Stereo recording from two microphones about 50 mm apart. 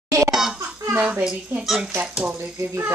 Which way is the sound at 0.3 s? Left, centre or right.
Centre.